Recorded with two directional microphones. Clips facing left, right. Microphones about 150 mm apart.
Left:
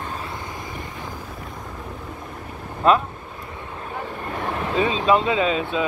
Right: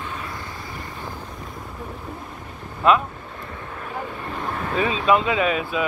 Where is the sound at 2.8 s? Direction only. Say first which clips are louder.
Even; 40° left (ahead or behind).